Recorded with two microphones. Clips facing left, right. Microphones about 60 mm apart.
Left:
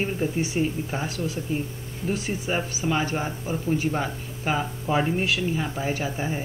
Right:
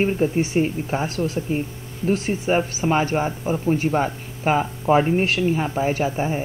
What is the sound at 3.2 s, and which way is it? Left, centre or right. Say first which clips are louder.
Speech: right 5 dB; right.